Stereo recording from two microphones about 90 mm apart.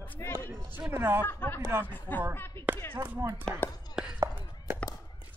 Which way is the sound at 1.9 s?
20° left (ahead or behind).